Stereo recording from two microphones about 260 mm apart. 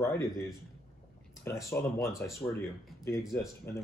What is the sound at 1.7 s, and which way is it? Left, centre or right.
Speech, centre.